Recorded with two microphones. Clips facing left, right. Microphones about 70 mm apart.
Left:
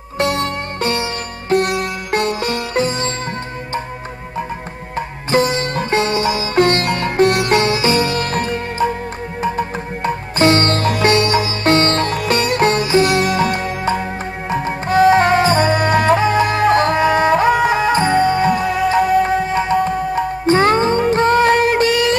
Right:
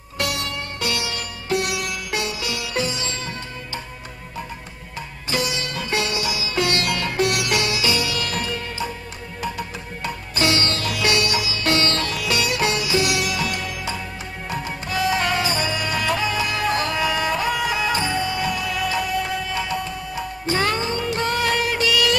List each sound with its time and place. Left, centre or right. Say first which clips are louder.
0.2 s sitar: left 8 dB; left
4.9 s sitar: left 10 dB; left
14.5 s music: left 10 dB; left